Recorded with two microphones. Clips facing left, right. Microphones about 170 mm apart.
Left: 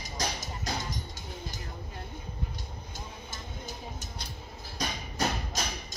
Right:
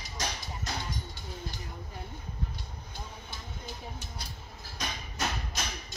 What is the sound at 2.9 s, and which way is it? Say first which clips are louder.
Vehicle: right 1 dB; 45° left (ahead or behind).